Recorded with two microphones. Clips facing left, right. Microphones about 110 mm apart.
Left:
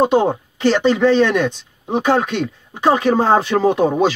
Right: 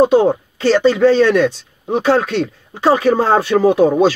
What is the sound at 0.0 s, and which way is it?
Speech, 20° left (ahead or behind).